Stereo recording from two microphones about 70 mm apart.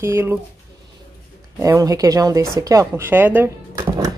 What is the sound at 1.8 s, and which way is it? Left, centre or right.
Speech, right.